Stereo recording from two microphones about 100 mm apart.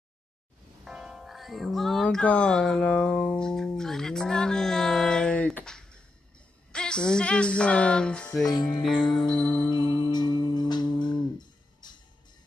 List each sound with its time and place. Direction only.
0.8 s music: 5° right (ahead or behind)
2.0 s speech: 15° left (ahead or behind)
8.5 s music: 45° left (ahead or behind)